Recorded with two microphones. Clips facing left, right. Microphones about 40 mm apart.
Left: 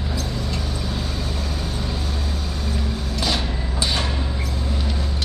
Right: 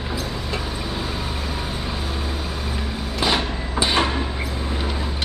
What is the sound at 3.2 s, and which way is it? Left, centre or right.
Sliding door, right.